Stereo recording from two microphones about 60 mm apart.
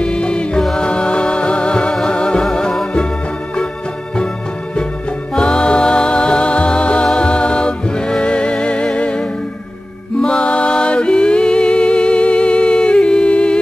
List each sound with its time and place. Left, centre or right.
0.0 s music: centre
0.6 s music: centre
0.8 s music: centre
5.3 s music: centre